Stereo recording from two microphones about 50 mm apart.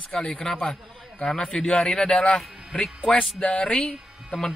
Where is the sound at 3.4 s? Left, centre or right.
Left.